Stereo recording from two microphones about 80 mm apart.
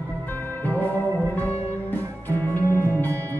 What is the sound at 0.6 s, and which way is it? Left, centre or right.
Music, left.